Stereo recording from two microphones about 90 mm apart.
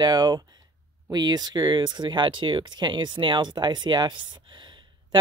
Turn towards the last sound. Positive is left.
turn(degrees=-60)  # may be behind; listen again after turning